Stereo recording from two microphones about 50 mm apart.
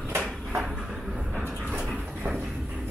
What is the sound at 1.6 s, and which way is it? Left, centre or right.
Dog, right.